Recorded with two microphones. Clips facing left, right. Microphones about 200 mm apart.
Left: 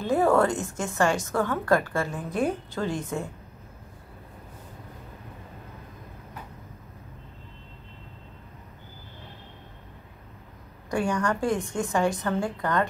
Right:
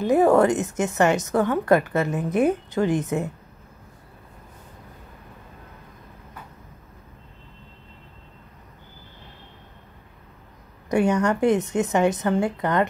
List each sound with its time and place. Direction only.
0.0 s a woman's voice: 20° right (ahead or behind)
10.9 s a woman's voice: 20° right (ahead or behind)